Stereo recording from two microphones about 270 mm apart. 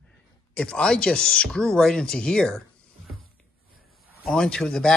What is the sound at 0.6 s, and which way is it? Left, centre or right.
Speech, centre.